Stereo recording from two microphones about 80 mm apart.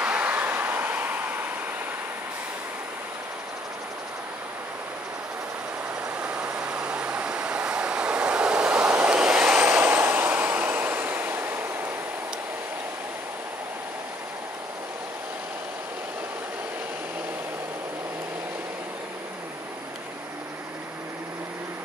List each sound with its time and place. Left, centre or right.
0.0 s vehicle: centre
6.2 s vehicle: centre
9.7 s vehicle: right